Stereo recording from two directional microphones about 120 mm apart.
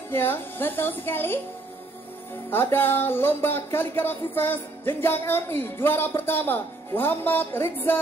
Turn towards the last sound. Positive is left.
turn(degrees=20)  # may be behind; listen again after turning